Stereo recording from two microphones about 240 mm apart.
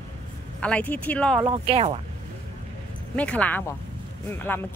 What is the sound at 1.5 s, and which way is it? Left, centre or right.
Speech, right.